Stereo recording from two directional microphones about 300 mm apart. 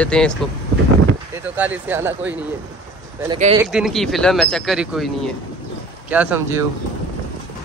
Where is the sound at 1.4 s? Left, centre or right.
Centre.